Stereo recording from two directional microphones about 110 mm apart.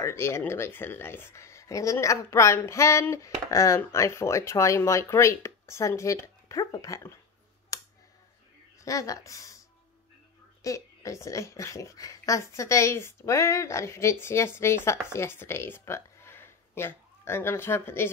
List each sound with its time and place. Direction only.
0.0 s speech: 25° left (ahead or behind)
8.7 s a woman's voice: 30° left (ahead or behind)